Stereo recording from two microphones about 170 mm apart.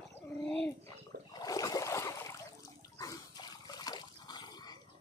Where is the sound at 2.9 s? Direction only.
20° left (ahead or behind).